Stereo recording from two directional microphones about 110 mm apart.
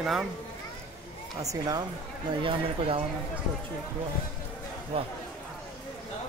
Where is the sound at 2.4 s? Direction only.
55° right (ahead or behind).